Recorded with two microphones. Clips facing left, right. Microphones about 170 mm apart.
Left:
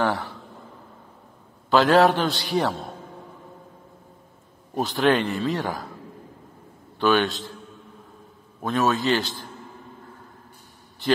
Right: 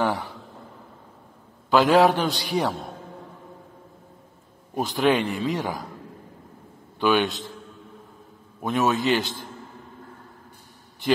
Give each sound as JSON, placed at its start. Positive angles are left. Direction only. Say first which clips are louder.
{"t": 1.7, "sound": "a man's voice", "louder": "even", "side_deg": -10}
{"t": 4.7, "sound": "a man's voice", "louder": "left 1 dB", "side_deg": -10}
{"t": 7.0, "sound": "a man's voice", "louder": "left 1 dB", "side_deg": -10}
{"t": 8.5, "sound": "a man's voice", "louder": "even", "side_deg": -15}